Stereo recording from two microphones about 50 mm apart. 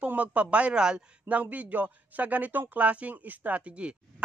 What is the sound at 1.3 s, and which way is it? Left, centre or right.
A man's voice, right.